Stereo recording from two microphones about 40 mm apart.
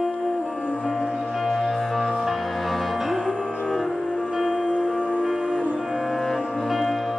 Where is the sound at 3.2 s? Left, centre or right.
Left.